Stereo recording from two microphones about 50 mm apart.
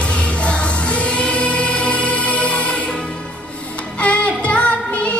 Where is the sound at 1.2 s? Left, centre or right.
Left.